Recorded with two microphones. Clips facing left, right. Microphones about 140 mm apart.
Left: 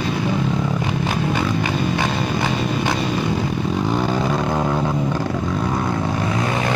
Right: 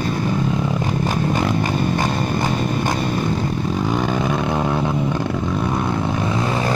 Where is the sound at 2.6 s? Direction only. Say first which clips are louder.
Even; 45° right (ahead or behind).